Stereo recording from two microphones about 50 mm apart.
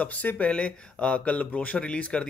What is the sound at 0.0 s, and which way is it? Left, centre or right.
Speech, left.